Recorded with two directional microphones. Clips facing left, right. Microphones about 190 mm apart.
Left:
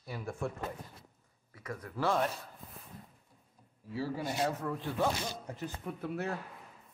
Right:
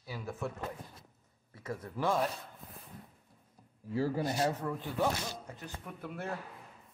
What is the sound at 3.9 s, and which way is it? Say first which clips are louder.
Speech: right 4 dB; 45° right (ahead or behind).